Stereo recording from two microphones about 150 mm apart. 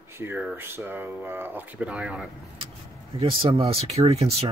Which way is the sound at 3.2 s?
40° right (ahead or behind).